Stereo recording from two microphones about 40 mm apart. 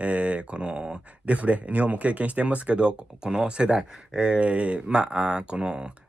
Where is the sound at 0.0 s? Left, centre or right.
Right.